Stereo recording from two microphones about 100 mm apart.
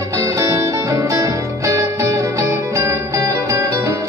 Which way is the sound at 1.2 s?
35° right (ahead or behind).